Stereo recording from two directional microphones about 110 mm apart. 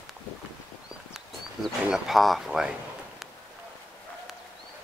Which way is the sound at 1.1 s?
Centre (ahead or behind).